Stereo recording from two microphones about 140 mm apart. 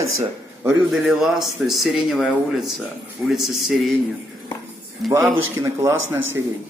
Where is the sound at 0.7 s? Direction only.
5° right (ahead or behind).